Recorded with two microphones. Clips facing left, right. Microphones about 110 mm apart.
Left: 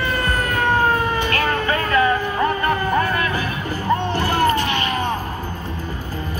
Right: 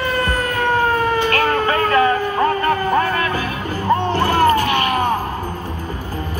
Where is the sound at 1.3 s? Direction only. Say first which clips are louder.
Right 3 dB; 40° right (ahead or behind).